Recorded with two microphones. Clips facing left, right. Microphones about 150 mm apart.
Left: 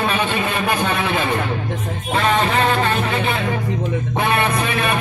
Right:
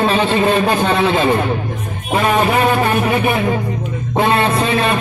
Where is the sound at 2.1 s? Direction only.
15° right (ahead or behind).